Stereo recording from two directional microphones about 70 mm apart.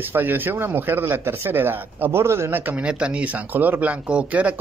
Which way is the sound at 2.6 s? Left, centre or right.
Centre.